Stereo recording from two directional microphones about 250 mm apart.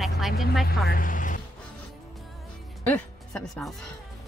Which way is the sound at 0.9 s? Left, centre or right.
Left.